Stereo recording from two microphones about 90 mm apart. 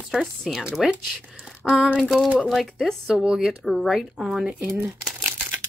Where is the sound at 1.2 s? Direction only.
10° right (ahead or behind).